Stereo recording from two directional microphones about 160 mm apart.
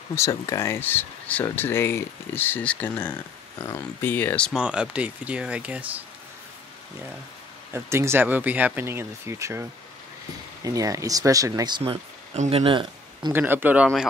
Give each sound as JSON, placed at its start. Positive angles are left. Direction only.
{"t": 0.1, "sound": "speech", "side_deg": 20}
{"t": 4.6, "sound": "speech", "side_deg": -5}
{"t": 7.7, "sound": "speech", "side_deg": -15}
{"t": 13.3, "sound": "speech", "side_deg": -10}